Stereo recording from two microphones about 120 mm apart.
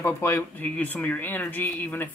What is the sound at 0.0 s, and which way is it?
Speech, 20° left (ahead or behind).